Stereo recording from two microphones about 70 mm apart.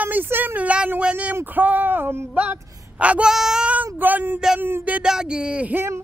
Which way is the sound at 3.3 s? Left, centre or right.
Centre.